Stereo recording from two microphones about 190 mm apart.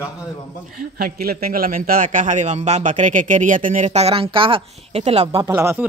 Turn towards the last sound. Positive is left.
turn(degrees=-15)  # may be behind; listen again after turning